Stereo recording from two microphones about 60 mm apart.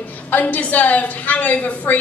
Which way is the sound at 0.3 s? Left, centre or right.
Left.